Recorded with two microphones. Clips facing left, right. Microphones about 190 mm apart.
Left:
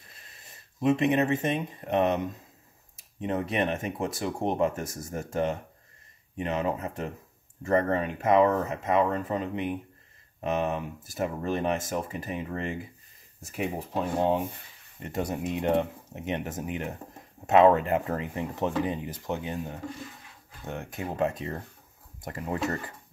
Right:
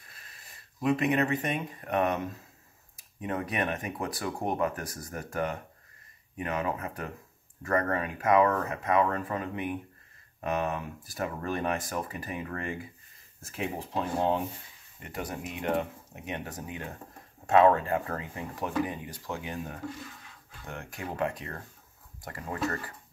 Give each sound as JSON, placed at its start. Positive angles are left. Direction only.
{"t": 0.1, "sound": "speech", "side_deg": 25}